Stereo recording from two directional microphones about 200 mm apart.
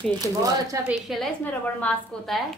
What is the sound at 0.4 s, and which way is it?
Speech, 15° right (ahead or behind).